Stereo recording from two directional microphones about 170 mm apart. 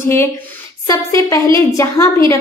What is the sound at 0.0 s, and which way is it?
A woman's voice, 15° left (ahead or behind).